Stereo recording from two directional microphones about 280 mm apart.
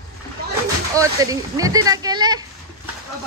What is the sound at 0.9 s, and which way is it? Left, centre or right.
Speech, centre.